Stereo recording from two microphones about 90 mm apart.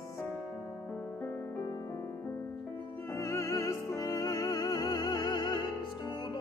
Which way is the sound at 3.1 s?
30° left (ahead or behind).